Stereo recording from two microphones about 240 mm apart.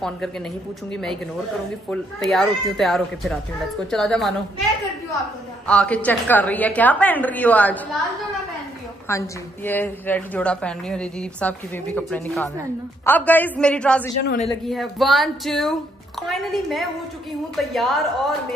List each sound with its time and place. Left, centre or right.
1.9 s speech: centre
5.7 s a woman's voice: centre
9.1 s a woman's voice: centre
14.2 s a man's voice: left
14.7 s speech: centre